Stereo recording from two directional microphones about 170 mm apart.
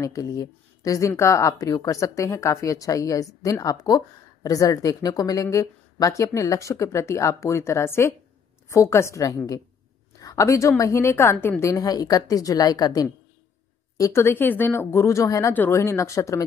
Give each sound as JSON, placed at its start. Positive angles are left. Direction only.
{"t": 0.0, "sound": "a woman's voice", "side_deg": 20}